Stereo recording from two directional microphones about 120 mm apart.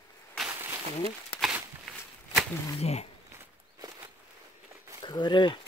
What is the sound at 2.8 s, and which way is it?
Speech, 60° left (ahead or behind).